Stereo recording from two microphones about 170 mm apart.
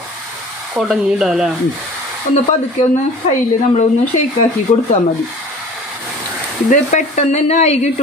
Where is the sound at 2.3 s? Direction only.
45° left (ahead or behind).